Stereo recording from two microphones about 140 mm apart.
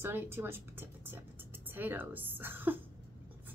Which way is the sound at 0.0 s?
15° right (ahead or behind).